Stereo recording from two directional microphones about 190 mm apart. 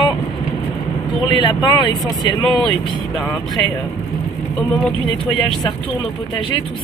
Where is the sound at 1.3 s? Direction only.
25° left (ahead or behind).